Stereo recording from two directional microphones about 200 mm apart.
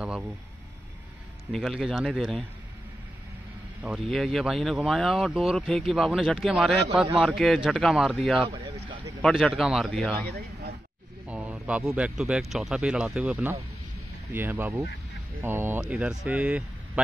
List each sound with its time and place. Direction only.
0.0 s speech: centre (ahead or behind)
1.5 s speech: centre (ahead or behind)
3.8 s speech: centre (ahead or behind)
8.5 s a sound: 25° right (ahead or behind)
9.2 s speech: centre (ahead or behind)
10.2 s speech: 50° right (ahead or behind)
11.2 s speech: 5° right (ahead or behind)